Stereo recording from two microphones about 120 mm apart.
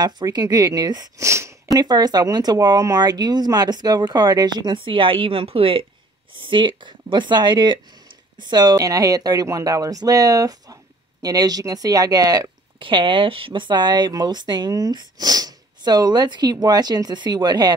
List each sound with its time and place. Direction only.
0.0 s speech: 35° right (ahead or behind)
12.7 s speech: 45° right (ahead or behind)